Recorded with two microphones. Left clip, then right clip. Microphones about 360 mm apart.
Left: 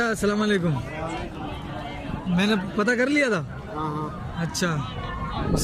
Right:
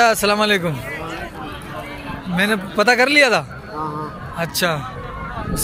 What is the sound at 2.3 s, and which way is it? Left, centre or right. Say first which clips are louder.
Speech: right 7 dB; centre.